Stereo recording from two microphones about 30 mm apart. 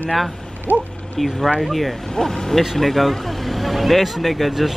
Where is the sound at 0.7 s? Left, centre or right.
Right.